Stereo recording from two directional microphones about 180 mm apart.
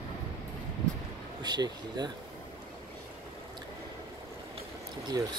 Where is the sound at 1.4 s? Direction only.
25° right (ahead or behind).